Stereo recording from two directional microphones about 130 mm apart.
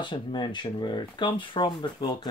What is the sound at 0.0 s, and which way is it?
Speech, 35° left (ahead or behind).